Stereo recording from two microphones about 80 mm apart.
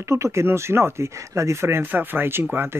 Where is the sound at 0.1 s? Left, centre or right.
Right.